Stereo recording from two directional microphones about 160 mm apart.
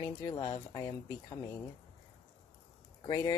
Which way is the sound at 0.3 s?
20° left (ahead or behind).